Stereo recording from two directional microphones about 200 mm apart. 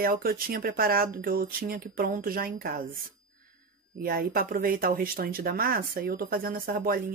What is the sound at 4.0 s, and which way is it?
Speech, 50° right (ahead or behind).